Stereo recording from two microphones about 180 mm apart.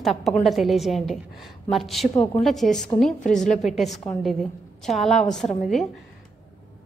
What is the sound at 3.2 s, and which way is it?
Speech, 45° left (ahead or behind).